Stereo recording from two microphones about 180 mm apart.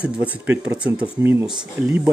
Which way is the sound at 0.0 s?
10° right (ahead or behind).